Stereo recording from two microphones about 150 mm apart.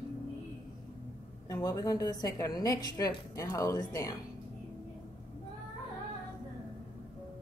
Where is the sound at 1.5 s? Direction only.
25° left (ahead or behind).